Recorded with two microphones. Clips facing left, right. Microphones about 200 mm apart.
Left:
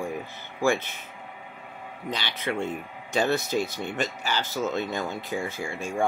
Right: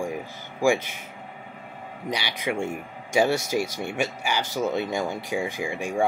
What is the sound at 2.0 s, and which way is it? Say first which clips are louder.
Speech: right 2 dB; 10° right (ahead or behind).